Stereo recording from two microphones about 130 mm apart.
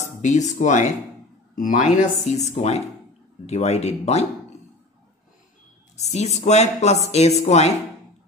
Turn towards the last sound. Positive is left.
turn(degrees=60)  # may be behind; listen again after turning